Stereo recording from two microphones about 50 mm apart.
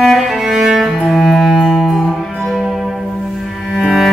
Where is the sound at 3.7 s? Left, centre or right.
Centre.